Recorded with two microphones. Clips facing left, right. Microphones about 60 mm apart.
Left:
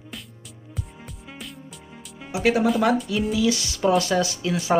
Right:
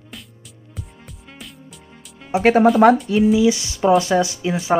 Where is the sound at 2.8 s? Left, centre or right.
Right.